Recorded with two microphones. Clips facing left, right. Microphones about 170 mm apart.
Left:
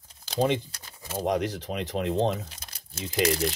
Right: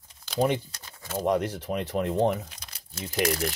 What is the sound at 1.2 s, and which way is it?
Speech, 80° left.